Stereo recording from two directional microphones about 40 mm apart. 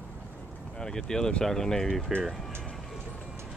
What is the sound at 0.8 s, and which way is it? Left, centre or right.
Speech, centre.